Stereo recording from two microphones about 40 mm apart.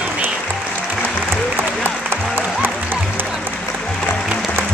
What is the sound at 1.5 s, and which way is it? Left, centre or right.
Applause, right.